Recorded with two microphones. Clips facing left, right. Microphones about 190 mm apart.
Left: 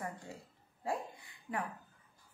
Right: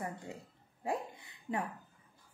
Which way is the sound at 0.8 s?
25° right (ahead or behind).